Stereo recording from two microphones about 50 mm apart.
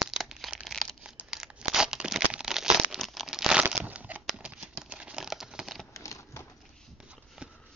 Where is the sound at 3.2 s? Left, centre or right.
Centre.